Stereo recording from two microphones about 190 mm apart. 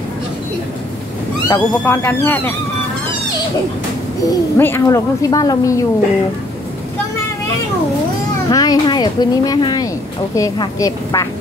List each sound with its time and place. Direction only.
1.5 s a woman's voice: 10° left (ahead or behind)
4.2 s a woman's voice: 15° left (ahead or behind)
8.5 s a woman's voice: 20° left (ahead or behind)